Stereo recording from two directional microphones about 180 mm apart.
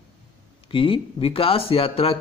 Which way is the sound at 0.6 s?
30° left (ahead or behind).